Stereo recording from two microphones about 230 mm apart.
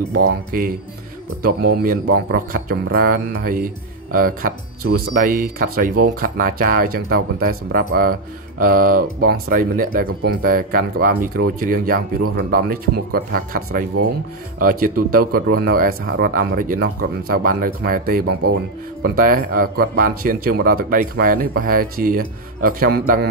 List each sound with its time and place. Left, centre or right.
0.5 s a man's voice: right
1.8 s a man's voice: right